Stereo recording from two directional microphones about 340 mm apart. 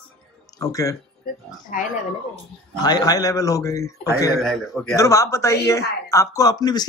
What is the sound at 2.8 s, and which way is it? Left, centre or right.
A man's voice, centre.